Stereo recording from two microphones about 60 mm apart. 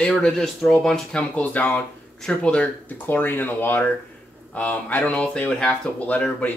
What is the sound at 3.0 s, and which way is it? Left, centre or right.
Speech, left.